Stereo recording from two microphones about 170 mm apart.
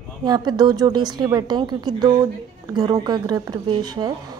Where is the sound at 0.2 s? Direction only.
25° right (ahead or behind).